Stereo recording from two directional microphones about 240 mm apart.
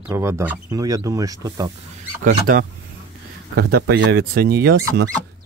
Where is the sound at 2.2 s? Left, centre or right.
Right.